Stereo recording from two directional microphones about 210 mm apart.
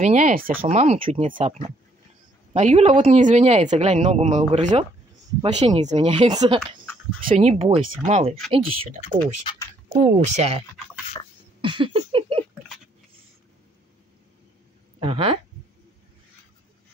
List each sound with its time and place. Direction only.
0.0 s speech: 35° right (ahead or behind)
7.2 s speech: 35° right (ahead or behind)
9.4 s speech: 25° left (ahead or behind)
9.9 s speech: 35° right (ahead or behind)
11.6 s a sound: 25° right (ahead or behind)
15.0 s speech: 25° right (ahead or behind)